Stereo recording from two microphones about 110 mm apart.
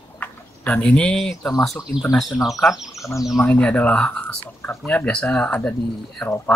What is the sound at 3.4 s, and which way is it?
Speech, 15° left (ahead or behind).